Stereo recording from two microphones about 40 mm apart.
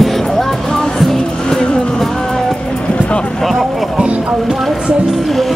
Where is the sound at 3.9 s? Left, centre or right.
Right.